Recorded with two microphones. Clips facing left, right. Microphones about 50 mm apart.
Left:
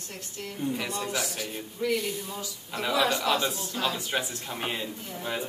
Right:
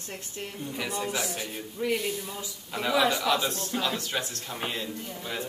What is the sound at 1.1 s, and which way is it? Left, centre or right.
Speech, right.